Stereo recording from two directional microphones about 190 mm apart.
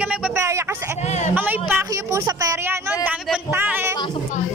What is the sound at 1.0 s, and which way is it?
Speech, 35° left (ahead or behind).